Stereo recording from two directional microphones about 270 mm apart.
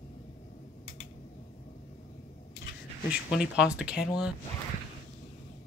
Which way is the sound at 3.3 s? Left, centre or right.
Centre.